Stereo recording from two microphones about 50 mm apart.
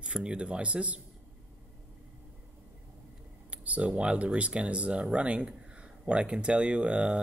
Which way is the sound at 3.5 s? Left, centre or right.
Right.